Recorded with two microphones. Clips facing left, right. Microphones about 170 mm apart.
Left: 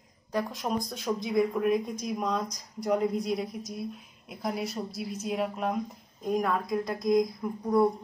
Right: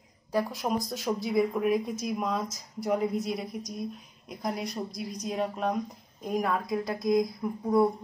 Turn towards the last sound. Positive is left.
turn(degrees=0)  # may be behind; listen again after turning